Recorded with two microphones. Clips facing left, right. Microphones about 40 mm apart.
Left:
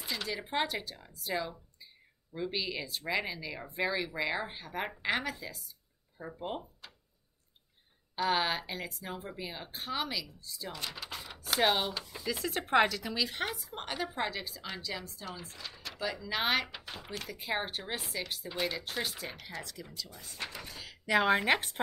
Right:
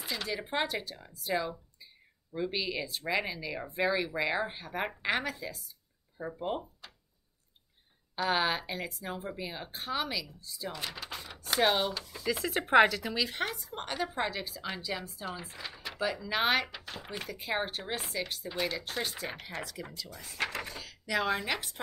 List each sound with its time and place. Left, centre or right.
0.0 s a woman's voice: centre
8.2 s a woman's voice: centre
16.7 s a woman's voice: centre
19.5 s speech: right
20.1 s speech: right
21.0 s speech: left